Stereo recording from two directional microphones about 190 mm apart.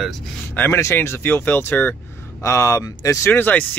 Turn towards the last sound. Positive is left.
turn(degrees=10)  # may be behind; listen again after turning